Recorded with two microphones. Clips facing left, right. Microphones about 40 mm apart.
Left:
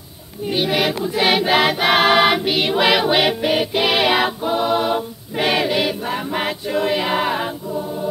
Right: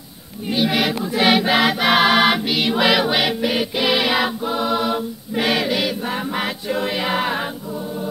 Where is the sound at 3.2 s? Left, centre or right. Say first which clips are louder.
Left 2 dB; left.